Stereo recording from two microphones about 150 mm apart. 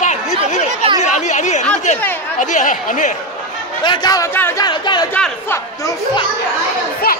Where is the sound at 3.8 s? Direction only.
30° left (ahead or behind).